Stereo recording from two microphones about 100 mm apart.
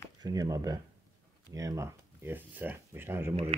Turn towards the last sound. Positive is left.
turn(degrees=-20)  # may be behind; listen again after turning